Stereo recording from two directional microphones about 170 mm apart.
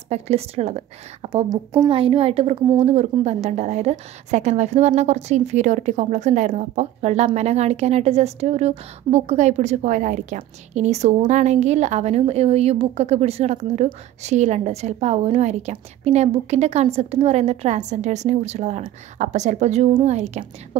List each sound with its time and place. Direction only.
0.1 s a woman's voice: 40° right (ahead or behind)
1.5 s a woman's voice: 25° right (ahead or behind); by 20.4 s 40° right (ahead or behind)